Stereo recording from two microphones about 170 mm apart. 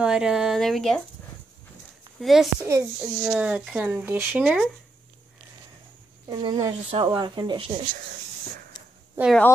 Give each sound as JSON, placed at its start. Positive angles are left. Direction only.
{"t": 0.0, "sound": "speech", "side_deg": -5}
{"t": 2.1, "sound": "speech", "side_deg": 0}
{"t": 2.6, "sound": "speech", "side_deg": -15}
{"t": 6.3, "sound": "speech", "side_deg": -25}